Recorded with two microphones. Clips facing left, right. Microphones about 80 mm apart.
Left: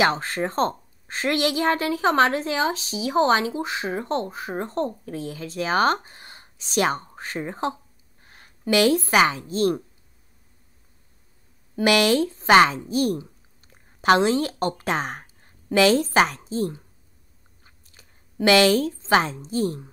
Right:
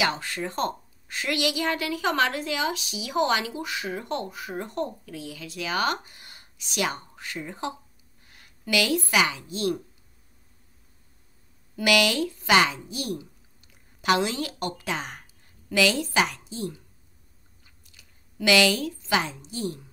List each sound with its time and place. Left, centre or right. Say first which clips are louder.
0.0 s a woman's voice: left 6 dB; left
11.7 s a woman's voice: left 4 dB; left